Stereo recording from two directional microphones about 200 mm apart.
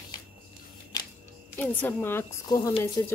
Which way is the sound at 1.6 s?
10° left (ahead or behind).